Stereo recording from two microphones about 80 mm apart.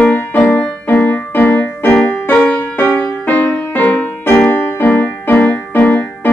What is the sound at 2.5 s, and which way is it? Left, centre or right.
Music, left.